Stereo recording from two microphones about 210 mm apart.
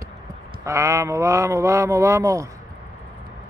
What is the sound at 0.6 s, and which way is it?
Mantra, 15° right (ahead or behind).